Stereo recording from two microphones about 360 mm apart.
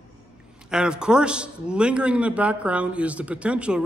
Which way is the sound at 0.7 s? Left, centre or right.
Centre.